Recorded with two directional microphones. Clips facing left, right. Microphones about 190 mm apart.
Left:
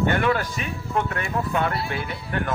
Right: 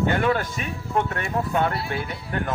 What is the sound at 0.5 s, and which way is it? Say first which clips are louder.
Speech: right 1 dB; 45° right (ahead or behind).